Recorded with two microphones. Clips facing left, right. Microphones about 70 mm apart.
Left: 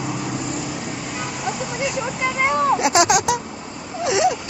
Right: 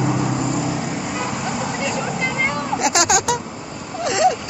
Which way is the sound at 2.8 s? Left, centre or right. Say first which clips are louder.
Left 1 dB; left.